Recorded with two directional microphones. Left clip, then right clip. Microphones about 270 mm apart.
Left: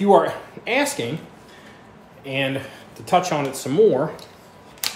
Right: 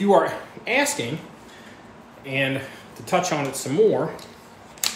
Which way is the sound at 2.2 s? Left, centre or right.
Centre.